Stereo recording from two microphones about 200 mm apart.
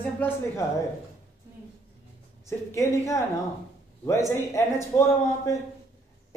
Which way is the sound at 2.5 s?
15° left (ahead or behind).